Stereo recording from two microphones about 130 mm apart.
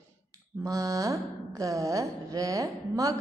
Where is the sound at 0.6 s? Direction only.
25° right (ahead or behind).